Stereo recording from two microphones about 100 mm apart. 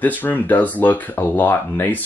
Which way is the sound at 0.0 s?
15° left (ahead or behind).